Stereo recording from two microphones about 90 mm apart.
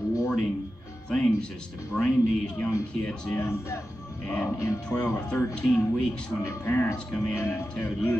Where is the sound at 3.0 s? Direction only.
10° left (ahead or behind).